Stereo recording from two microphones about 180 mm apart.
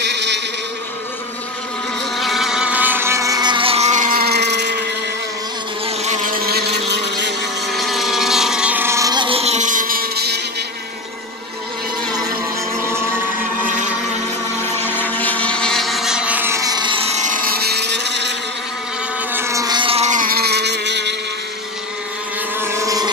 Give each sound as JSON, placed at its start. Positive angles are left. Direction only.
{"t": 0.0, "sound": "insect", "side_deg": -75}
{"t": 2.1, "sound": "motorboat", "side_deg": 0}
{"t": 5.9, "sound": "motorboat", "side_deg": -40}
{"t": 7.6, "sound": "motorboat", "side_deg": 0}
{"t": 12.8, "sound": "a sound", "side_deg": -15}
{"t": 14.8, "sound": "motorboat", "side_deg": 10}
{"t": 19.3, "sound": "vehicle", "side_deg": -15}
{"t": 22.6, "sound": "vehicle", "side_deg": -20}